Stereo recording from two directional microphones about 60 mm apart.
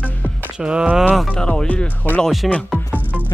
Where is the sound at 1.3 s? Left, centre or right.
Centre.